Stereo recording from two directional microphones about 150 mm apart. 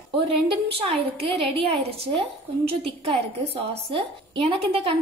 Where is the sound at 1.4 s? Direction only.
40° right (ahead or behind).